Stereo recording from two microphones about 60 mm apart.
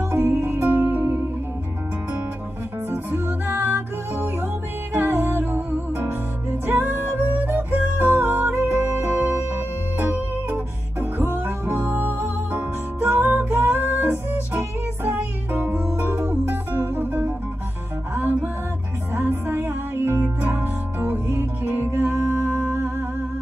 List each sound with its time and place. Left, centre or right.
0.1 s music: right
2.9 s music: right